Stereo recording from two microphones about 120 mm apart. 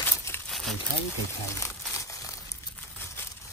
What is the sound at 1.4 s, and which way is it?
Crumpling, 25° left (ahead or behind).